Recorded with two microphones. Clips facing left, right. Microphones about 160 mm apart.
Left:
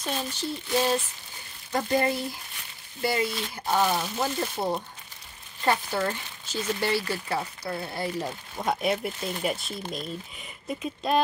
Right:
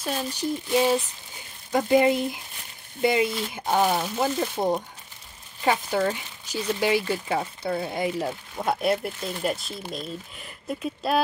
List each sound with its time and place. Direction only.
0.0 s speech: 10° right (ahead or behind)